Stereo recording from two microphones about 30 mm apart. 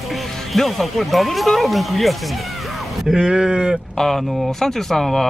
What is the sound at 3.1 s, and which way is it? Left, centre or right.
Speech, right.